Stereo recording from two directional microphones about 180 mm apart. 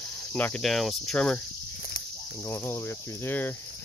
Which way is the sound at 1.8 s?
50° left (ahead or behind).